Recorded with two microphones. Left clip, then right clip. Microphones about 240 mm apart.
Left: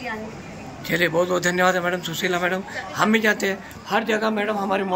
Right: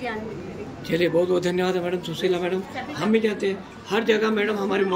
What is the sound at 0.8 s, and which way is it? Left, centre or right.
A man's voice, centre.